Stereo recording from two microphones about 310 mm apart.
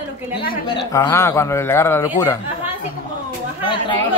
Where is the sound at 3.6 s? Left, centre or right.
Centre.